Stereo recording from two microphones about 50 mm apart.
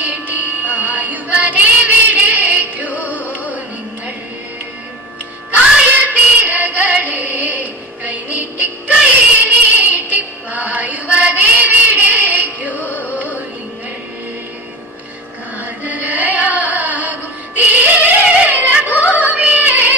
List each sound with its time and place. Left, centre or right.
0.0 s music: right
5.9 s female singing: right
12.8 s music: left
15.6 s music: right